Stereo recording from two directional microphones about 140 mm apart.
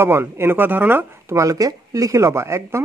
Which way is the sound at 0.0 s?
15° right (ahead or behind).